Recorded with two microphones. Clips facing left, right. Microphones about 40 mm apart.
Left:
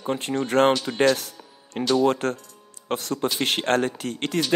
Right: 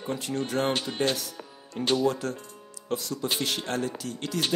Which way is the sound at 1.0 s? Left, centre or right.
Left.